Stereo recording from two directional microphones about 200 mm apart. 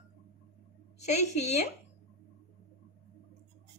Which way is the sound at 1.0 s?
35° left (ahead or behind).